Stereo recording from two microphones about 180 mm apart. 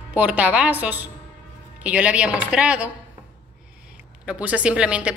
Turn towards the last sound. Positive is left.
turn(degrees=-5)  # may be behind; listen again after turning